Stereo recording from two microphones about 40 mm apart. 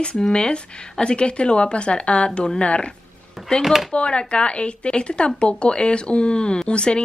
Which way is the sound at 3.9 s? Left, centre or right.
Left.